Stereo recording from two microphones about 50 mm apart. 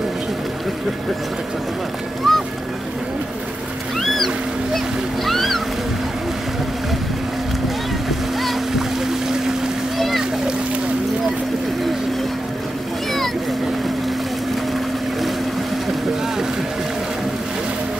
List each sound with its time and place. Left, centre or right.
2.3 s boat: centre
4.0 s boat: centre
4.7 s music: centre
8.4 s boat: centre
9.9 s splash: centre